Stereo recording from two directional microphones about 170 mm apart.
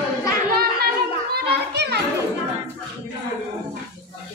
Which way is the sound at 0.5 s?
70° right (ahead or behind).